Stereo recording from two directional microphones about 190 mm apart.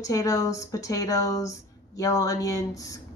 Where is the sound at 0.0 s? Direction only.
20° left (ahead or behind).